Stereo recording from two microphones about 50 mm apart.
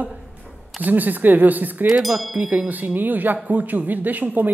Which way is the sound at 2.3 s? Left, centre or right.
Right.